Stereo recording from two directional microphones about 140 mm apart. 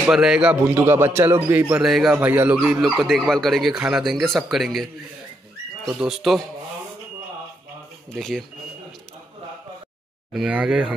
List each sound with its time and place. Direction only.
0.1 s a man's voice: 5° right (ahead or behind)
2.1 s speech: 10° right (ahead or behind)
5.9 s speech: 5° right (ahead or behind)
8.2 s speech: centre (ahead or behind)
10.3 s a man's voice: 10° right (ahead or behind)